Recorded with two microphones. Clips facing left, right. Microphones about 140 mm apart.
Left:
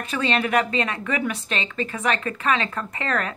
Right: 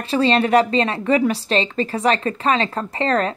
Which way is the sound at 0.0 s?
35° right (ahead or behind).